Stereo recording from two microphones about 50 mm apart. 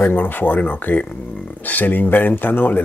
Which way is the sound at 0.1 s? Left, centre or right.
Left.